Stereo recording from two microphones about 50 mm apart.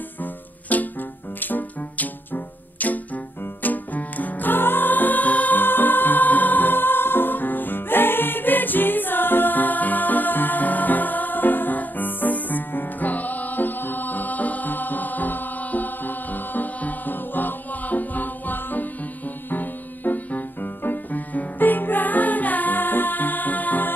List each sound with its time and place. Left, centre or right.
0.2 s music: left